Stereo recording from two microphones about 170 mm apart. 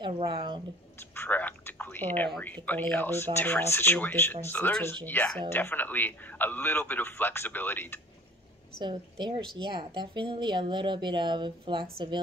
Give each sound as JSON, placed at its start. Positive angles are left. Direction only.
{"t": 0.0, "sound": "a woman's voice", "side_deg": -30}
{"t": 0.9, "sound": "a man's voice", "side_deg": 10}
{"t": 8.7, "sound": "a woman's voice", "side_deg": -30}